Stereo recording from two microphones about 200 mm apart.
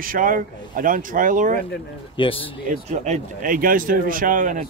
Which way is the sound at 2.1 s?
25° left (ahead or behind).